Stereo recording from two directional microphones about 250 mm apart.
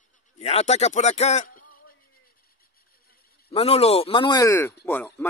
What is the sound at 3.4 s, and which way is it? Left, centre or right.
Speech, left.